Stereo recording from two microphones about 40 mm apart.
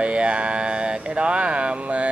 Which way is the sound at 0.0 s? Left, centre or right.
Right.